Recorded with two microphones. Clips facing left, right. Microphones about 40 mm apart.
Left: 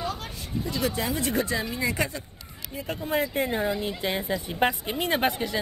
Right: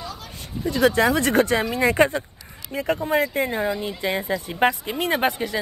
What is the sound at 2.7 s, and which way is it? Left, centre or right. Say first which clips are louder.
Speech: right 10 dB; right.